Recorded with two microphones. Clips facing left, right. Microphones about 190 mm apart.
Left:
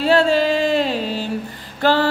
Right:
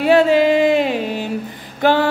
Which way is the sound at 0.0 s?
15° right (ahead or behind).